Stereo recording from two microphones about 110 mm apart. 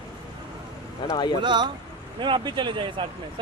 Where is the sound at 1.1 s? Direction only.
40° left (ahead or behind).